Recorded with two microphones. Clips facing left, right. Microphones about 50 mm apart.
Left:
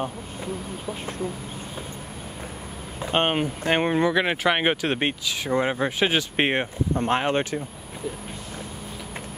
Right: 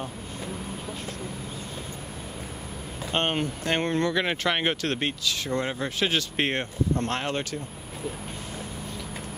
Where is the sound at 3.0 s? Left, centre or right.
Centre.